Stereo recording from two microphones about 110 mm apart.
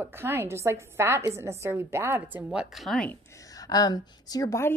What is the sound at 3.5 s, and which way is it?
A woman's voice, 35° left (ahead or behind).